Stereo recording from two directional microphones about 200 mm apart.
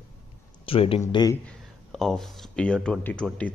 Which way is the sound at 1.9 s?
Centre (ahead or behind).